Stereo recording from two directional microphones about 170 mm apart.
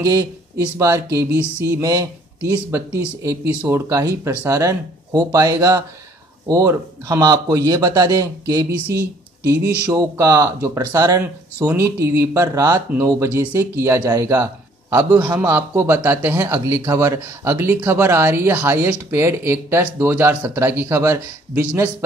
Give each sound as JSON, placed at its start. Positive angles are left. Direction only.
{"t": 0.0, "sound": "a man's voice", "side_deg": -20}
{"t": 9.8, "sound": "speech", "side_deg": -15}